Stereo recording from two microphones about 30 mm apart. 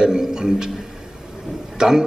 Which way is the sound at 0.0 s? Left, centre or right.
Right.